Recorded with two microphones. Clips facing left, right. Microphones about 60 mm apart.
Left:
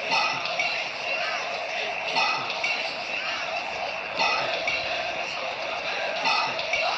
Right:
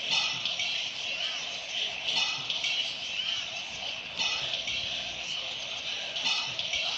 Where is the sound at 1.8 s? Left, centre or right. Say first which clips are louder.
Left 7 dB; left.